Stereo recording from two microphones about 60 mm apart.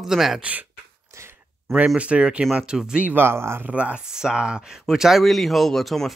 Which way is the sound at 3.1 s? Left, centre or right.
Right.